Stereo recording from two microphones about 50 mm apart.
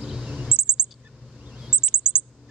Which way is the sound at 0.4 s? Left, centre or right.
Centre.